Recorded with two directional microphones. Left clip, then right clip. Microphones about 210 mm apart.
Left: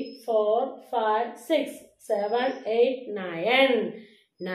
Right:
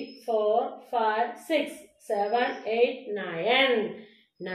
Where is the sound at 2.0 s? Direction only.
15° left (ahead or behind).